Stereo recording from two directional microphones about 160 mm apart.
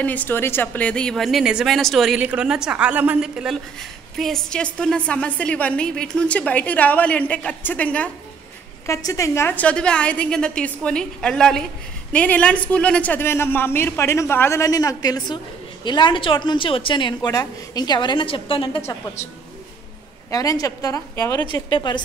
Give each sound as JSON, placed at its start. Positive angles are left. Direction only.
{"t": 0.0, "sound": "a woman's voice", "side_deg": 10}
{"t": 8.8, "sound": "a woman's voice", "side_deg": 20}
{"t": 20.2, "sound": "speech", "side_deg": 20}
{"t": 21.5, "sound": "a woman's voice", "side_deg": 30}